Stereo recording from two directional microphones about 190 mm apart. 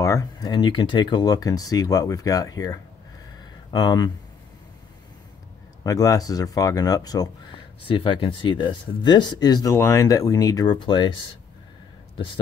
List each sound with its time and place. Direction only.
0.0 s speech: 15° left (ahead or behind)
5.9 s speech: 20° left (ahead or behind)